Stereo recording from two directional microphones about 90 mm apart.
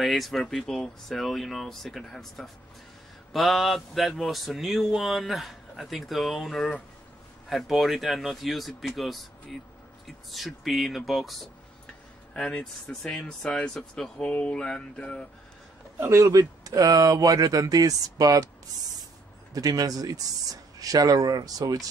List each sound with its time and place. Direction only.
0.0 s speech: centre (ahead or behind)
12.4 s speech: 10° left (ahead or behind)
16.0 s speech: 30° right (ahead or behind)
19.5 s speech: 45° right (ahead or behind)